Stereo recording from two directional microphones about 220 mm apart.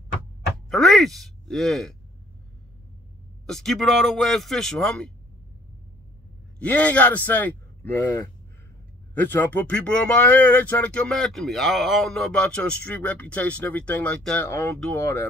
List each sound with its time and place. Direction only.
0.7 s speech: centre (ahead or behind)
3.4 s a man's voice: centre (ahead or behind)
6.6 s speech: 5° left (ahead or behind)